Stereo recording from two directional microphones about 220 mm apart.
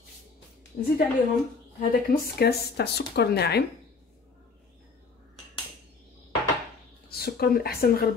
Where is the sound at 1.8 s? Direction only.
45° left (ahead or behind).